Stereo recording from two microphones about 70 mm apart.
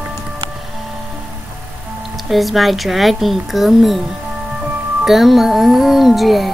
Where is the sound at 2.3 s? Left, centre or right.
Centre.